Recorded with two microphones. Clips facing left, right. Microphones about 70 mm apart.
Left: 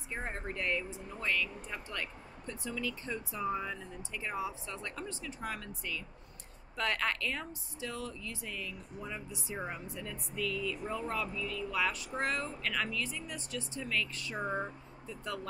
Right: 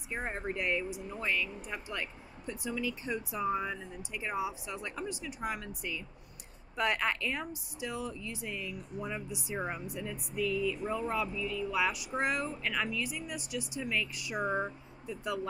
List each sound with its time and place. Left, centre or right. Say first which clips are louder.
0.1 s speech: right 3 dB; centre